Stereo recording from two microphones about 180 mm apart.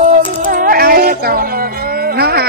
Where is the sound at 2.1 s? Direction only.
60° right (ahead or behind).